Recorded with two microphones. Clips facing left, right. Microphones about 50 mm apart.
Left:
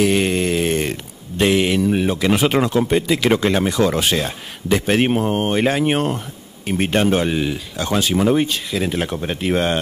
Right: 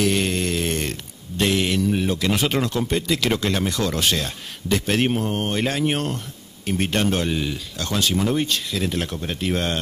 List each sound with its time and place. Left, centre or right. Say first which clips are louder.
0.0 s speech: left 4 dB; centre